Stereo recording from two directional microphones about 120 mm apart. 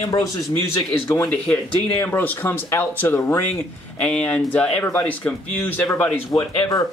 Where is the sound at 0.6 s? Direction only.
20° left (ahead or behind).